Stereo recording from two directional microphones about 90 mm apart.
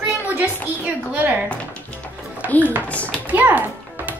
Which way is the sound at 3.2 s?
20° right (ahead or behind).